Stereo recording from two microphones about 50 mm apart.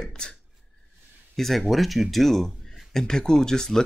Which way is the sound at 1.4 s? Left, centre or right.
Centre.